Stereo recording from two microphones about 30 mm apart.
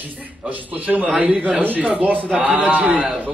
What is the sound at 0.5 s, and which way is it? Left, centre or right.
A man's voice, right.